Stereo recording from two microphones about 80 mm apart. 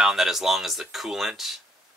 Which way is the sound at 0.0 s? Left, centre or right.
Centre.